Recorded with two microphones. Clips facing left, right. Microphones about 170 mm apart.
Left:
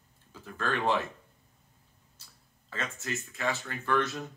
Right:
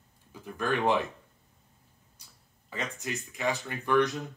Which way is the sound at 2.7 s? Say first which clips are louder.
Right 1 dB; 15° right (ahead or behind).